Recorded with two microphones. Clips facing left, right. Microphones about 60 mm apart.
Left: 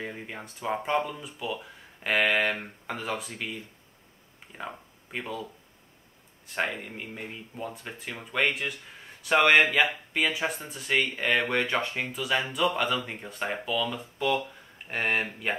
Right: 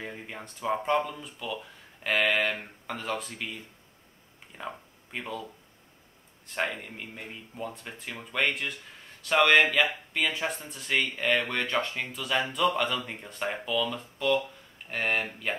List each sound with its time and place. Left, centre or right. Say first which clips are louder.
0.0 s speech: left 2 dB; centre
2.5 s speech: left 2 dB; centre
3.0 s speech: even; centre
4.6 s speech: even; centre